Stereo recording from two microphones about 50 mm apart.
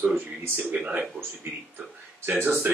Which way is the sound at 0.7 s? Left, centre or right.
Right.